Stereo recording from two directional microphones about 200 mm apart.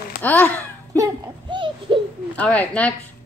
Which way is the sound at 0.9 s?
20° right (ahead or behind).